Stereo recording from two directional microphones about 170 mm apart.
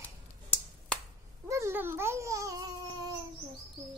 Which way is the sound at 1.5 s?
15° right (ahead or behind).